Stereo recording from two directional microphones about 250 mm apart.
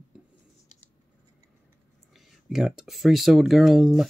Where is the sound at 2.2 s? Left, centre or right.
Centre.